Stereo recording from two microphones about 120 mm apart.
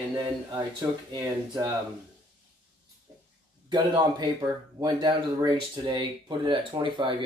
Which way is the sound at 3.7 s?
35° right (ahead or behind).